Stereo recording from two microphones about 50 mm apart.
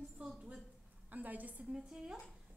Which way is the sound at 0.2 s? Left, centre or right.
Right.